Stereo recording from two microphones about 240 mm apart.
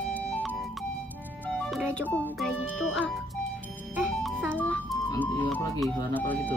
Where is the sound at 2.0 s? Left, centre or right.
Centre.